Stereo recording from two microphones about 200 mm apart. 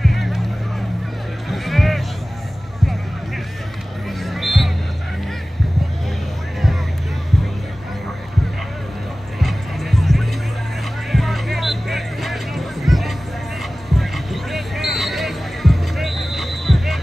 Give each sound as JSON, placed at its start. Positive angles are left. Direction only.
{"t": 0.0, "sound": "music", "side_deg": 0}
{"t": 1.5, "sound": "music", "side_deg": 0}
{"t": 4.2, "sound": "music", "side_deg": 0}
{"t": 9.4, "sound": "music", "side_deg": 0}